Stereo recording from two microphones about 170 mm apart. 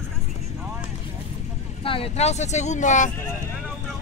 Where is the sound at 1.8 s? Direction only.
30° left (ahead or behind).